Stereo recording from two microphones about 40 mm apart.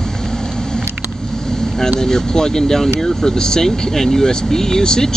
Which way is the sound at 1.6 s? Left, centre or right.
Centre.